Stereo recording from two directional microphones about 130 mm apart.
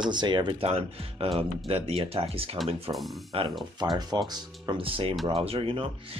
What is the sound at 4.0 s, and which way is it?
Speech, 35° right (ahead or behind).